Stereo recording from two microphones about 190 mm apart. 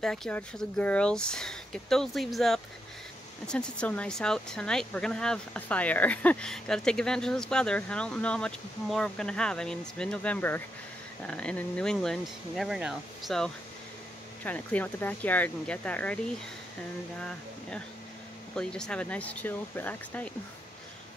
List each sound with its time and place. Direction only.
0.0 s speech: 5° left (ahead or behind)
17.2 s speech: 5° left (ahead or behind)